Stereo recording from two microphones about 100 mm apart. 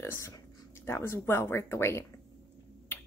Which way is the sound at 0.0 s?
25° left (ahead or behind).